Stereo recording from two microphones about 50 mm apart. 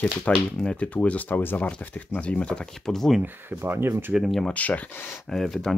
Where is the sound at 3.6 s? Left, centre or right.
Right.